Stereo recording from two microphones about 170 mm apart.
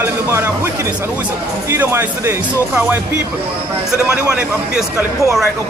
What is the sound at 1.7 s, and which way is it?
Speech, 15° right (ahead or behind).